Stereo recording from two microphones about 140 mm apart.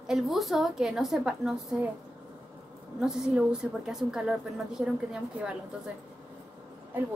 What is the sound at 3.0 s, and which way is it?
A woman's voice, 5° right (ahead or behind).